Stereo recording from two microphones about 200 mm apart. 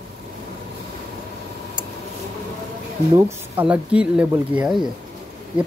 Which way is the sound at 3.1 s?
10° right (ahead or behind).